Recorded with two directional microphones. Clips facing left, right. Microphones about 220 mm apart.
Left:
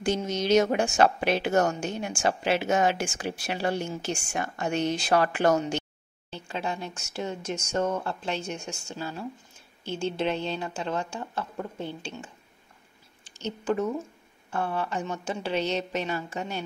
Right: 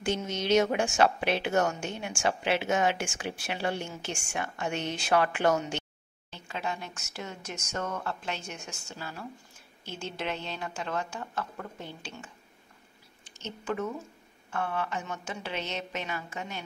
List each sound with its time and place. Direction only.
0.0 s a woman's voice: 40° left (ahead or behind)
13.3 s a woman's voice: 35° left (ahead or behind)